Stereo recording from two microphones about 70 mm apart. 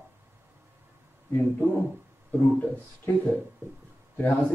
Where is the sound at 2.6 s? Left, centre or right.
Left.